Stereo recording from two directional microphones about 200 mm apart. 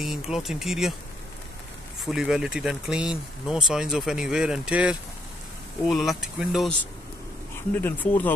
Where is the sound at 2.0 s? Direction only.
Centre (ahead or behind).